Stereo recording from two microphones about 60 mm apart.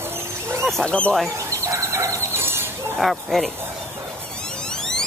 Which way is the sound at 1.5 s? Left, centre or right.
Right.